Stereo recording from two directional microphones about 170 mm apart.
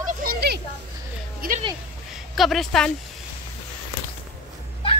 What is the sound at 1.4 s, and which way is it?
Speech, 60° right (ahead or behind).